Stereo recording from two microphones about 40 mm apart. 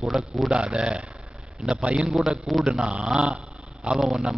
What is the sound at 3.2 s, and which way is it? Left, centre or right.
Dog, right.